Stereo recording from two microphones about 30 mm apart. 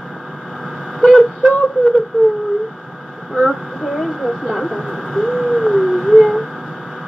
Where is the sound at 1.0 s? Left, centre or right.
Right.